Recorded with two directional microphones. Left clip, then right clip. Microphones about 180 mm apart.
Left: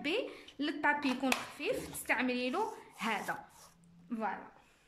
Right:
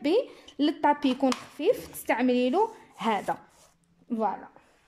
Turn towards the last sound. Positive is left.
turn(degrees=-30)  # may be behind; listen again after turning